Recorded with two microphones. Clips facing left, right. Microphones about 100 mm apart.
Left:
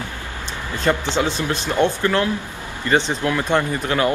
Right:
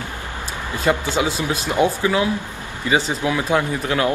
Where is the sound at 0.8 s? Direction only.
10° right (ahead or behind).